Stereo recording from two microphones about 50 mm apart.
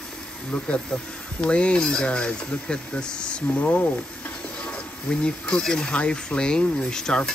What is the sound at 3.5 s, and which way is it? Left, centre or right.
Speech, left.